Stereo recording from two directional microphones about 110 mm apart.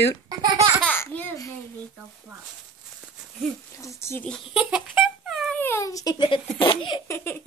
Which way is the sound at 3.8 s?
25° left (ahead or behind).